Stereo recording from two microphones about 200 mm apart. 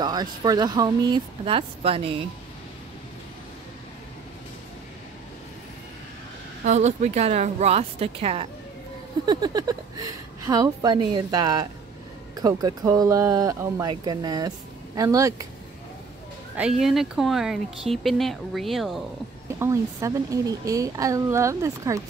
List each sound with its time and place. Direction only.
0.0 s speech: 20° right (ahead or behind)
6.6 s a woman's voice: 35° right (ahead or behind); by 15.4 s 15° right (ahead or behind)
16.8 s speech: centre (ahead or behind)
19.6 s a woman's voice: 15° right (ahead or behind)